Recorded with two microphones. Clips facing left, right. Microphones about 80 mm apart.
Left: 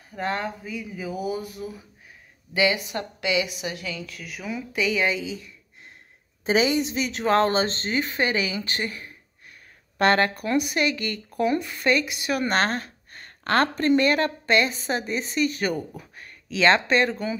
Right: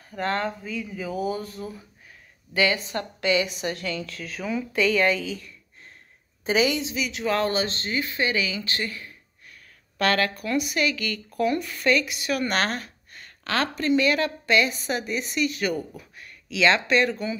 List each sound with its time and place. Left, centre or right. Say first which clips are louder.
0.1 s a woman's voice: right 1 dB; centre
6.4 s a woman's voice: left 1 dB; left
9.9 s a woman's voice: left 3 dB; left
15.7 s speech: even; centre
16.0 s speech: left 2 dB; left